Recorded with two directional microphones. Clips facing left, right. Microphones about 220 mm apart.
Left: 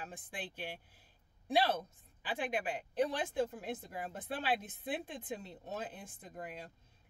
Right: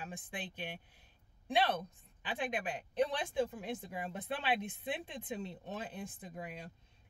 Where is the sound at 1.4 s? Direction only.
10° left (ahead or behind).